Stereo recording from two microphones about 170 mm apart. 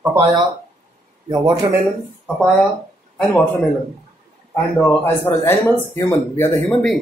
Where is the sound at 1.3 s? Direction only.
25° right (ahead or behind).